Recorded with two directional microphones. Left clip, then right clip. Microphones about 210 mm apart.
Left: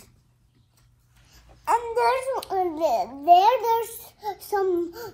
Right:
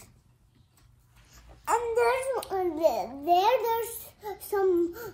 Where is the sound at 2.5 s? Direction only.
10° left (ahead or behind).